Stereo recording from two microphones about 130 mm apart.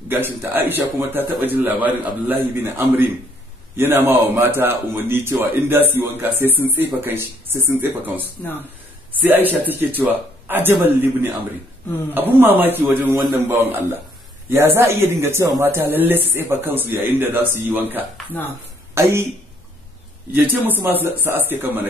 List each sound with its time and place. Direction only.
0.1 s speech: 15° right (ahead or behind)
9.1 s speech: 15° right (ahead or behind)
20.4 s speech: 15° right (ahead or behind)